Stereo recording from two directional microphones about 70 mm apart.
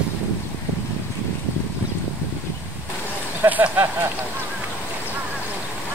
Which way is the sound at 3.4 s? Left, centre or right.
Right.